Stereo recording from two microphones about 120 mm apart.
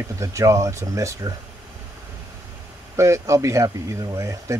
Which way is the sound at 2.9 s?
25° right (ahead or behind).